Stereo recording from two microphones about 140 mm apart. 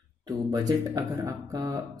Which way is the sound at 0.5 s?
25° right (ahead or behind).